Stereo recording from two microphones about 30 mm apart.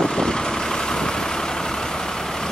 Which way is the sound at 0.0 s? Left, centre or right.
Left.